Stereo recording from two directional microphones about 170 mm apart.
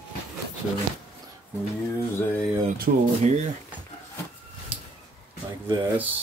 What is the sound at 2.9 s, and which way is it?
Speech, 60° right (ahead or behind).